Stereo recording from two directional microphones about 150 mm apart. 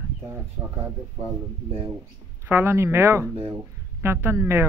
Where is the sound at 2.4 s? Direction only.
15° right (ahead or behind).